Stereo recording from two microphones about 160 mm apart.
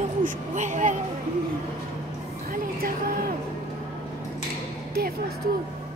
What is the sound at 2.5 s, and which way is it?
Speech, 65° right (ahead or behind).